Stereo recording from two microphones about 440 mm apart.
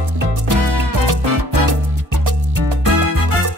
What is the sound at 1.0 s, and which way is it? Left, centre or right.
Music, right.